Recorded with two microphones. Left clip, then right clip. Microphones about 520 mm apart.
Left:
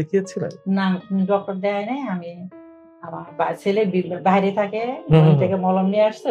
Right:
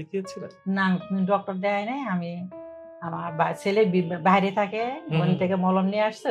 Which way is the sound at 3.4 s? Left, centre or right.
Right.